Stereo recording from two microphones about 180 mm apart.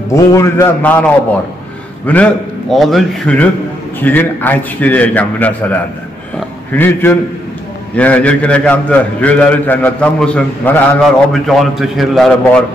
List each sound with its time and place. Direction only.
0.1 s a man's voice: 15° left (ahead or behind)
6.8 s a man's voice: 10° left (ahead or behind)